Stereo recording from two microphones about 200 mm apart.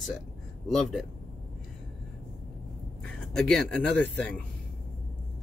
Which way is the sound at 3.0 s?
5° left (ahead or behind).